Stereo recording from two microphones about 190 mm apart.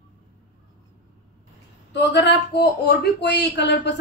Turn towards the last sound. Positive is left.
turn(degrees=65)  # may be behind; listen again after turning